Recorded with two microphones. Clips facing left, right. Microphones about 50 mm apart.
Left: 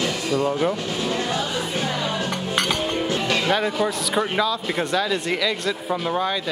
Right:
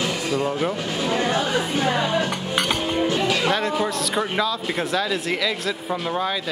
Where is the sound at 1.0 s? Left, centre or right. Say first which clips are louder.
Right 4 dB; right.